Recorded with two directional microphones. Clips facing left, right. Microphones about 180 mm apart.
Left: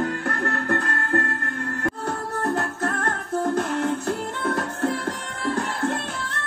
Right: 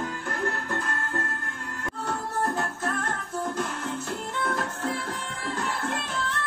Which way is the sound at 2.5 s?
55° left (ahead or behind).